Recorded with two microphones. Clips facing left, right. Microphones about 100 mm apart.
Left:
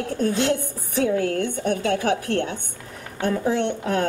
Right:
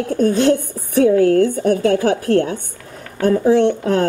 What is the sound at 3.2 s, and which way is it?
Speech, 35° right (ahead or behind).